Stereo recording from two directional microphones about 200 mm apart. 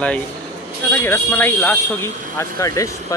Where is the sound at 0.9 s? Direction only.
10° left (ahead or behind).